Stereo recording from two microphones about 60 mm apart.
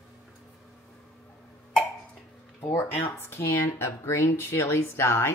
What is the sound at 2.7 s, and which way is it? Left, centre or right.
Speech, left.